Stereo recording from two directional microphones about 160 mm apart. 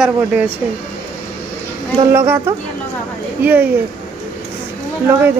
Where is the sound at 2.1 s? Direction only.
15° right (ahead or behind).